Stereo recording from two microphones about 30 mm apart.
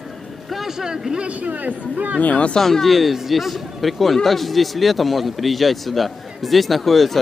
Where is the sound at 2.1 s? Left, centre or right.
Left.